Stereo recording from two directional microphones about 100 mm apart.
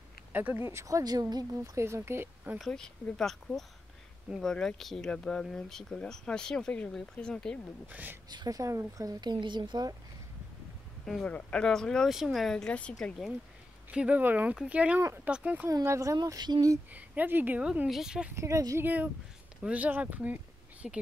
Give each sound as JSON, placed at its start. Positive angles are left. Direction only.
{"t": 0.3, "sound": "speech", "side_deg": -15}
{"t": 2.6, "sound": "speech", "side_deg": 5}
{"t": 7.9, "sound": "speech", "side_deg": -15}
{"t": 8.3, "sound": "speech", "side_deg": -40}
{"t": 11.1, "sound": "speech", "side_deg": 10}
{"t": 13.8, "sound": "speech", "side_deg": -15}
{"t": 15.7, "sound": "speech", "side_deg": -30}
{"t": 16.2, "sound": "speech", "side_deg": -45}
{"t": 16.9, "sound": "speech", "side_deg": -15}
{"t": 18.3, "sound": "speech", "side_deg": -30}
{"t": 19.6, "sound": "speech", "side_deg": -15}
{"t": 20.8, "sound": "speech", "side_deg": -5}